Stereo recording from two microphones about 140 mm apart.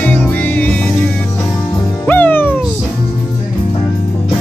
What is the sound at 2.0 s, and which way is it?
Music, 15° left (ahead or behind).